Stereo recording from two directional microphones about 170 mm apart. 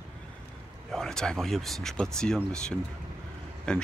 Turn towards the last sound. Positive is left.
turn(degrees=5)  # may be behind; listen again after turning